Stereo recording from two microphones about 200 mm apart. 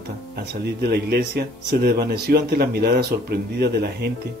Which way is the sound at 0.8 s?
55° right (ahead or behind).